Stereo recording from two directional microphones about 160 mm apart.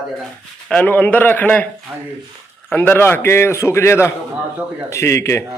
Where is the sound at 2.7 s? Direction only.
10° left (ahead or behind).